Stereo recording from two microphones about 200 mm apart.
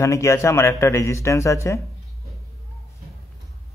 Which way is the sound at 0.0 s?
15° left (ahead or behind).